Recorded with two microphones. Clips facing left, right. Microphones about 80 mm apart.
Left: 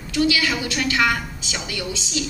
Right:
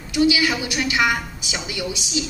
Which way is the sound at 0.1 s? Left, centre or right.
Centre.